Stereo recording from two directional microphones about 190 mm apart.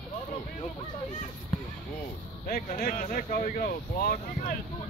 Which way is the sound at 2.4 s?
45° left (ahead or behind).